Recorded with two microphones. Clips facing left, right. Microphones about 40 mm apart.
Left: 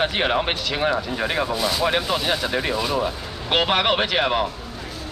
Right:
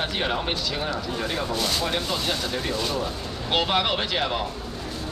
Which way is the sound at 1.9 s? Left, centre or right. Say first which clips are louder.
Left 5 dB; left.